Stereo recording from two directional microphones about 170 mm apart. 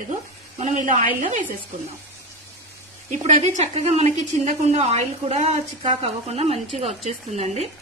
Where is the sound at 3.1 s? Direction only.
40° right (ahead or behind).